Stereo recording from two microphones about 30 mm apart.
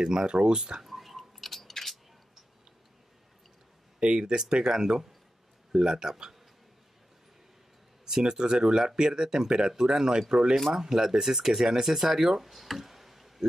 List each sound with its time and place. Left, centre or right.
0.0 s speech: right
0.8 s chewing: centre
4.0 s speech: right
8.0 s speech: right
10.5 s speech: centre